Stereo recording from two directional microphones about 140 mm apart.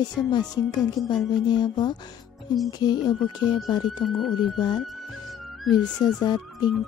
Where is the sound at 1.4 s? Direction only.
30° left (ahead or behind).